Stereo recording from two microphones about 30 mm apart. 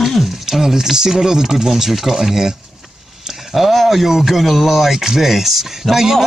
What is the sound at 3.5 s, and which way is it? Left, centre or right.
Speech, centre.